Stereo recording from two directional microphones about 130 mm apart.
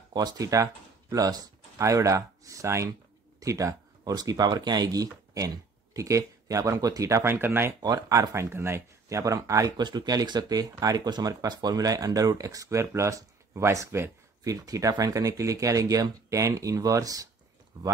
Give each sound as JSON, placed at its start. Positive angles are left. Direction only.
{"t": 0.1, "sound": "speech", "side_deg": -30}